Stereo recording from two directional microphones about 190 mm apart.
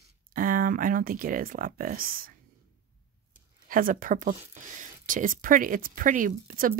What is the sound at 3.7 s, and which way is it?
Speech, 45° right (ahead or behind).